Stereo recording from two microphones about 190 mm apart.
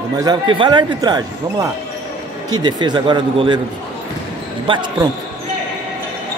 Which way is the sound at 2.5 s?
20° right (ahead or behind).